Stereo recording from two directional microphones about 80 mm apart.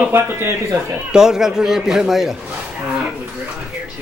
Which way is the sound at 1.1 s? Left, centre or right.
Centre.